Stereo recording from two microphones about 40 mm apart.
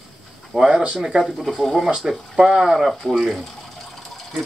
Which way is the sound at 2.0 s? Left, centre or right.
Centre.